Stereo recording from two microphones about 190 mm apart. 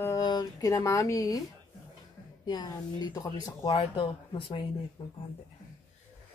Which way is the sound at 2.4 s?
20° left (ahead or behind).